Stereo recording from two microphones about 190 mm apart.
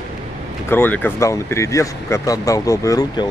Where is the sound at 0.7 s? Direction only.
10° left (ahead or behind).